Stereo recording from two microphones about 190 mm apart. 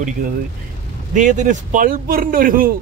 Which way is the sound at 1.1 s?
40° right (ahead or behind).